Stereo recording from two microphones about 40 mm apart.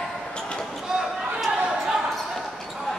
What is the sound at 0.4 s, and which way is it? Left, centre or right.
Basketball bounce, centre.